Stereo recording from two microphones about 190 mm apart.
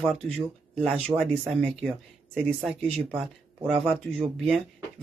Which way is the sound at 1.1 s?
5° left (ahead or behind).